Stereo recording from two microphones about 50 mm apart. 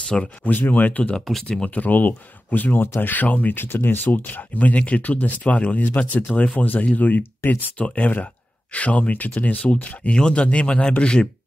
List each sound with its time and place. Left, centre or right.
0.1 s speech: centre
0.7 s speech: left
5.9 s speech: left
6.3 s speech: left